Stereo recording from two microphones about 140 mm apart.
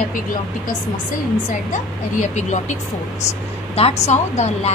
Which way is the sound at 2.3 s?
55° left (ahead or behind).